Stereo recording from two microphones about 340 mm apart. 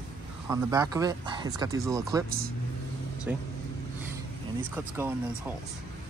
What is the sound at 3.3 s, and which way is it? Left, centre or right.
Speech, centre.